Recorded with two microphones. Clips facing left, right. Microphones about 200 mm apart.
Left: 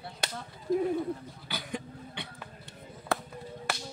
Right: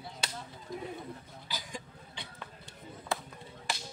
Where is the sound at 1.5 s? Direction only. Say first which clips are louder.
Left 6 dB; 60° left (ahead or behind).